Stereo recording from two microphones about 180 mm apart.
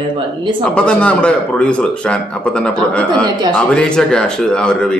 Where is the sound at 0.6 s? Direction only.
5° left (ahead or behind).